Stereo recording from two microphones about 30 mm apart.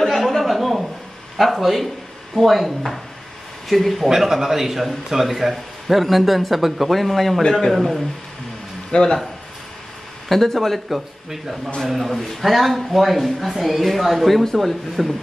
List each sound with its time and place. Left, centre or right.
0.0 s a sound: centre
1.4 s a man's voice: centre
4.1 s a man's voice: centre
7.7 s a man's voice: centre
8.9 s speech: left
10.2 s speech: centre
10.9 s a man's voice: centre